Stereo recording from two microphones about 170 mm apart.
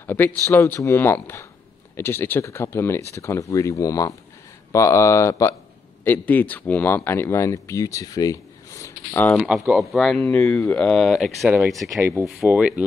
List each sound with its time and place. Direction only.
0.0 s speech: 10° left (ahead or behind)
9.7 s speech: centre (ahead or behind)
12.0 s speech: 10° right (ahead or behind)